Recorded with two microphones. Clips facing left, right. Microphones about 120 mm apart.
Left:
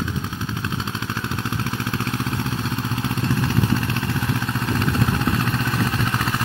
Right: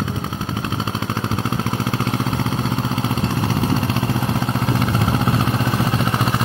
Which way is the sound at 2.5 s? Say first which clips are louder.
Right 4 dB; 25° right (ahead or behind).